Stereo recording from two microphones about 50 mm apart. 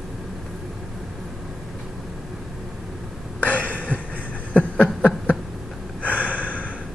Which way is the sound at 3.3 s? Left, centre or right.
Left.